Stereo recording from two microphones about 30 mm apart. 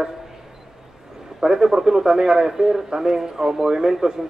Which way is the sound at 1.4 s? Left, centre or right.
Centre.